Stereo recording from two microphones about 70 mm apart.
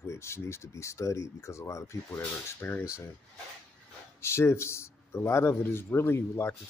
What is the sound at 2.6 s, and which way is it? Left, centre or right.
Speech, left.